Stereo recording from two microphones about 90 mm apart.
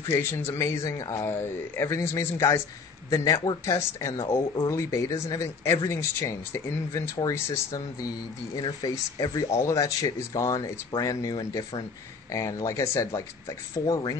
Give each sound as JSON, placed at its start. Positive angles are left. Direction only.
{"t": 0.0, "sound": "speech", "side_deg": 25}
{"t": 8.5, "sound": "speech", "side_deg": 50}